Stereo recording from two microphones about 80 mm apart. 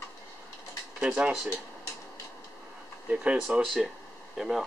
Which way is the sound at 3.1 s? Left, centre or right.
Centre.